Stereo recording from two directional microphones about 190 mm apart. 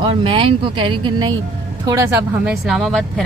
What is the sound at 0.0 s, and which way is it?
Speech, 25° right (ahead or behind).